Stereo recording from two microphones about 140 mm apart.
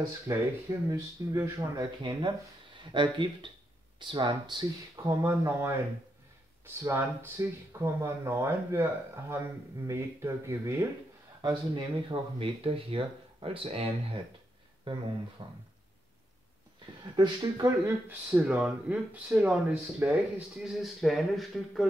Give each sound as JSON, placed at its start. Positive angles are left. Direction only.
{"t": 0.3, "sound": "speech", "side_deg": -20}
{"t": 2.0, "sound": "speech", "side_deg": -35}
{"t": 11.4, "sound": "speech", "side_deg": -35}
{"t": 15.4, "sound": "speech", "side_deg": -30}
{"t": 17.0, "sound": "speech", "side_deg": -30}